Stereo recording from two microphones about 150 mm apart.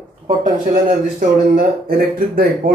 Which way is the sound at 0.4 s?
60° right (ahead or behind).